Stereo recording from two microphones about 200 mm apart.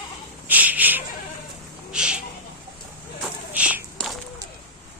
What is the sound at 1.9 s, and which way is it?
Speech, 5° right (ahead or behind).